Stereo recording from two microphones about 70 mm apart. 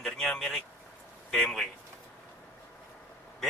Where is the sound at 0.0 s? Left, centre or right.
Centre.